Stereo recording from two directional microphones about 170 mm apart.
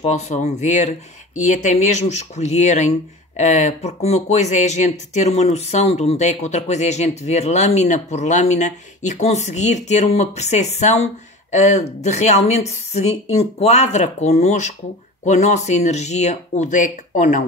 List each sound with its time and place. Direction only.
0.0 s speech: 40° left (ahead or behind)